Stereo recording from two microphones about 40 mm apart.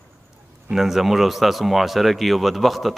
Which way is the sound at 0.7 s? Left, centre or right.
Centre.